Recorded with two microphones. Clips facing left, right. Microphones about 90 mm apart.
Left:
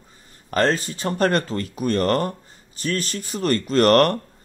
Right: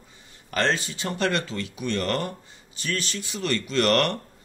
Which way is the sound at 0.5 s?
40° left (ahead or behind).